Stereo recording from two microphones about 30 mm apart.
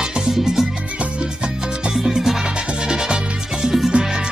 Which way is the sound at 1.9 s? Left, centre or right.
Right.